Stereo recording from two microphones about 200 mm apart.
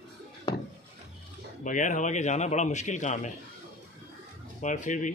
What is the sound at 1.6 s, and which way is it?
Speech, 40° left (ahead or behind).